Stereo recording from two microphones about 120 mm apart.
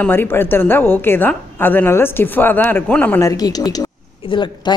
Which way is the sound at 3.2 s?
30° left (ahead or behind).